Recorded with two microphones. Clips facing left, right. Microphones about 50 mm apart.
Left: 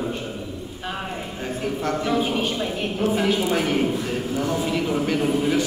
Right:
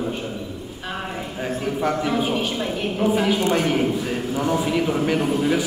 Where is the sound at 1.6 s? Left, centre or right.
Centre.